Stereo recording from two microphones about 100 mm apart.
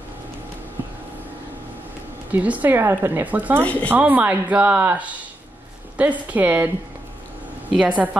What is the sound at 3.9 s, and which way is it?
Speech, 15° right (ahead or behind).